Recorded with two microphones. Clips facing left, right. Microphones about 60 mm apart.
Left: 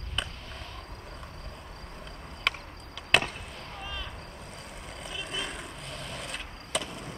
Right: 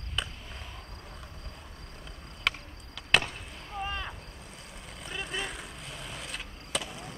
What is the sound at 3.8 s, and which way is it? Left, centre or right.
Vehicle, right.